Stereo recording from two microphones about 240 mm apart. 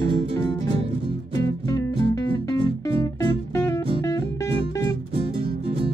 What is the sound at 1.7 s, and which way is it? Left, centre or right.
Music, centre.